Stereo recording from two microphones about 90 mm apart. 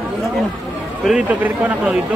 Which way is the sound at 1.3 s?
15° right (ahead or behind).